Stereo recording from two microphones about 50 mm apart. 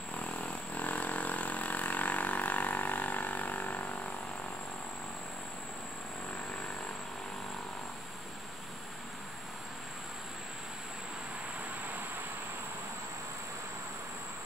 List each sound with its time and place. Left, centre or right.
0.1 s vehicle: left